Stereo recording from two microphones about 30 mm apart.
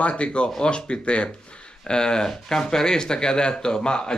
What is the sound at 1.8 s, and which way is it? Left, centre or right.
Speech, left.